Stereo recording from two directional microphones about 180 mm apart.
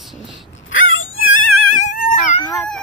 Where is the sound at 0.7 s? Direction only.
90° left.